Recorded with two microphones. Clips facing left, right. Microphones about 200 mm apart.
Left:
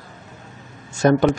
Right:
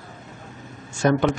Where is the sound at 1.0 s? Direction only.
40° left (ahead or behind).